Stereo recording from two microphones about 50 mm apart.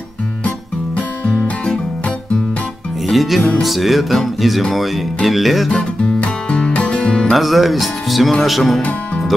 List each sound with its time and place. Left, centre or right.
3.1 s speech: centre
5.7 s music: centre
7.3 s speech: centre